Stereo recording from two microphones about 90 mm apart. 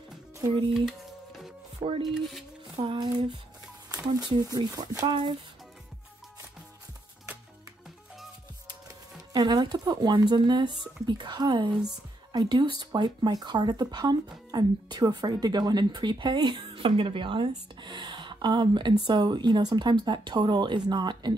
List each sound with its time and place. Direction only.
0.7 s music: 5° right (ahead or behind)
1.8 s speech: 55° right (ahead or behind)
3.0 s speech: 50° right (ahead or behind)
9.3 s speech: 50° right (ahead or behind)